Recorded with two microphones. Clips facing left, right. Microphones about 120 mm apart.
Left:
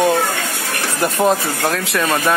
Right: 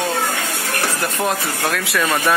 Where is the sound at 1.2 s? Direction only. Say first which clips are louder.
Left 5 dB; 15° left (ahead or behind).